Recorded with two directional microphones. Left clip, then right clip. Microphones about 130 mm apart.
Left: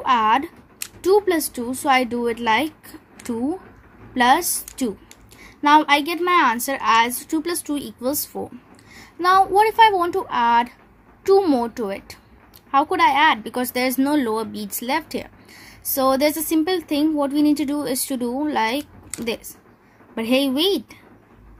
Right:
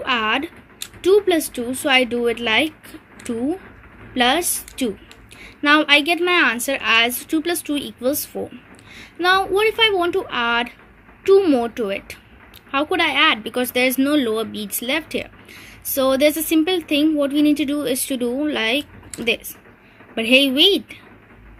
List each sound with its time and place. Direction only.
0.0 s a sound: 55° left (ahead or behind)
1.1 s speech: 60° left (ahead or behind)
5.6 s speech: 55° left (ahead or behind)